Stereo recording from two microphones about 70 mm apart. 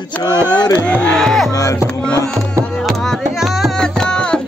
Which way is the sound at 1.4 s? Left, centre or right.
Left.